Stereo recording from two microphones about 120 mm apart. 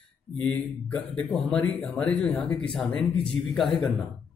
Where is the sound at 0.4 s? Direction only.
10° left (ahead or behind).